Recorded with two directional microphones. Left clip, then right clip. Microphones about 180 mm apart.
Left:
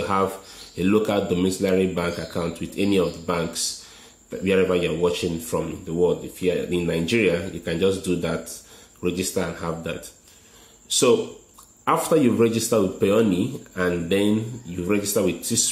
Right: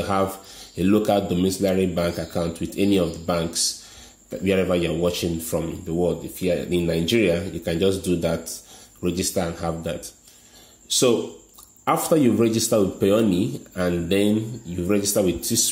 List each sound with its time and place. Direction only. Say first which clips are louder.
0.0 s speech: even; 35° right (ahead or behind)